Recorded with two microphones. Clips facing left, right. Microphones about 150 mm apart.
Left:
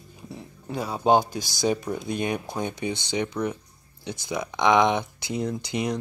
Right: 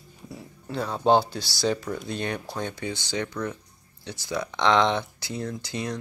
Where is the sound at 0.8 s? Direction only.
10° left (ahead or behind).